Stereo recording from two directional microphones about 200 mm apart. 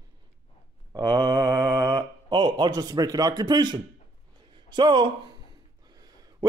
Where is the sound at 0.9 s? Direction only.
20° right (ahead or behind).